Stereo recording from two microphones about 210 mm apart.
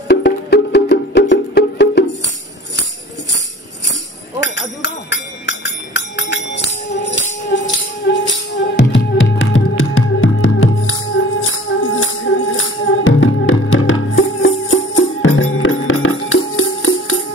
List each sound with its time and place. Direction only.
0.1 s music: 50° left (ahead or behind)
4.4 s music: 55° left (ahead or behind); by 17.2 s 75° left (ahead or behind)